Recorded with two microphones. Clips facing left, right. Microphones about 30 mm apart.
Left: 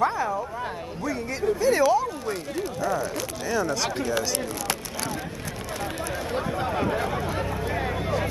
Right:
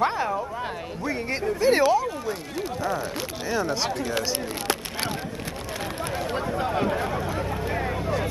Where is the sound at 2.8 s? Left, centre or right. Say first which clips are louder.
Left 2 dB; right.